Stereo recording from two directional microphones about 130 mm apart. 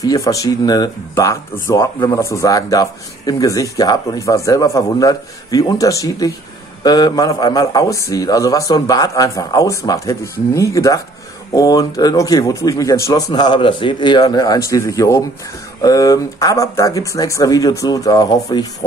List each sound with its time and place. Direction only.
0.0 s a man's voice: 25° left (ahead or behind)
13.3 s a man's voice: 35° left (ahead or behind)